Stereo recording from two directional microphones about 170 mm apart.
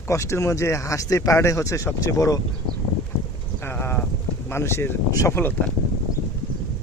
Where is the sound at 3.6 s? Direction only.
15° left (ahead or behind).